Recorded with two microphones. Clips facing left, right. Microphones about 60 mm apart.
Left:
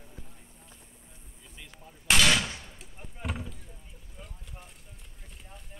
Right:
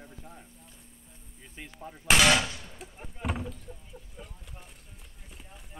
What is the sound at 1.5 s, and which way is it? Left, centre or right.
Artillery fire, right.